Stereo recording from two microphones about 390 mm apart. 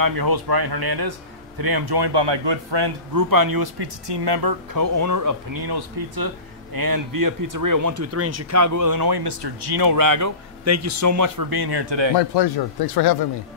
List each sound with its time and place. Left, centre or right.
0.0 s a man's voice: right
3.2 s speech: right
12.2 s speech: left